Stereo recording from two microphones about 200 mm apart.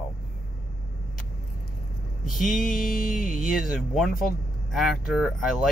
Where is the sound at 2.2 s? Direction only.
Centre (ahead or behind).